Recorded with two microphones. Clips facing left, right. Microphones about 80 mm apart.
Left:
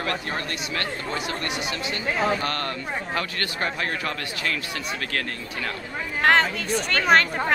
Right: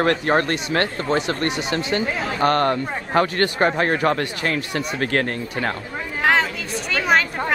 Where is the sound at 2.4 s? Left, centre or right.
Right.